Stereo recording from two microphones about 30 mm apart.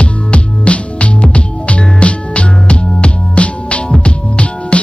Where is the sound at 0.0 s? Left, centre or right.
Left.